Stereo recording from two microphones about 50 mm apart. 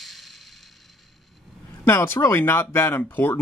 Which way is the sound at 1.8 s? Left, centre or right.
Left.